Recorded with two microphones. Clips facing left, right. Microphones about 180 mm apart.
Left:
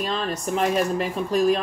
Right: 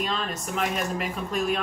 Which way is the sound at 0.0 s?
35° left (ahead or behind).